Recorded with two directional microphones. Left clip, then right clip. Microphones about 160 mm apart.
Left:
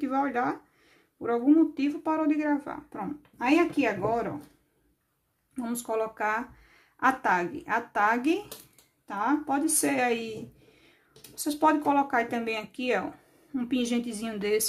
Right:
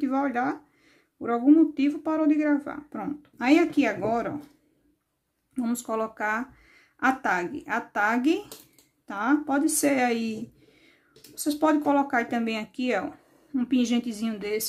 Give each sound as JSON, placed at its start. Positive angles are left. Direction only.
{"t": 0.0, "sound": "speech", "side_deg": -20}
{"t": 5.6, "sound": "speech", "side_deg": -20}
{"t": 11.3, "sound": "speech", "side_deg": -20}
{"t": 14.3, "sound": "speech", "side_deg": -5}